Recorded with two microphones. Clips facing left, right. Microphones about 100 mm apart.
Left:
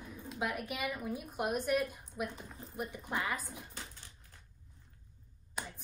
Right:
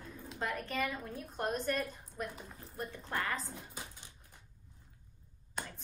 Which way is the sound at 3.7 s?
15° right (ahead or behind).